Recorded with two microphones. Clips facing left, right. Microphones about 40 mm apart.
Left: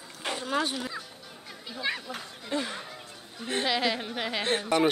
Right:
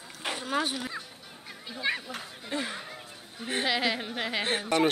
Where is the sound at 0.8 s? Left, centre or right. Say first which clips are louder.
Left 1 dB; right.